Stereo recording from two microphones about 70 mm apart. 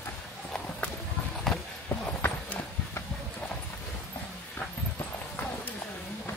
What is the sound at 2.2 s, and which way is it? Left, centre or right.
Horse, left.